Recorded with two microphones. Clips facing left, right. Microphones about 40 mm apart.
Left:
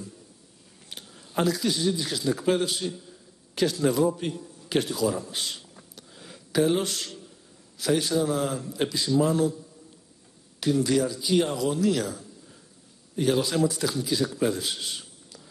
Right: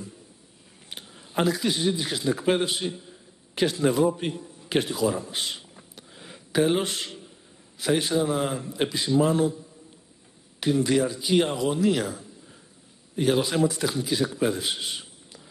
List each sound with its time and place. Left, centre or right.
0.8 s a man's voice: right
10.6 s a man's voice: right